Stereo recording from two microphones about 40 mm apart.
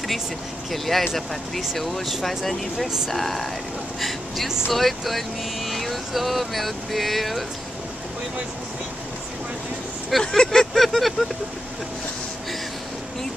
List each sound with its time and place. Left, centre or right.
0.7 s speech: centre
4.5 s speech: centre
4.7 s speech: centre
10.2 s vehicle: left
10.5 s vehicle: centre
10.8 s vehicle: centre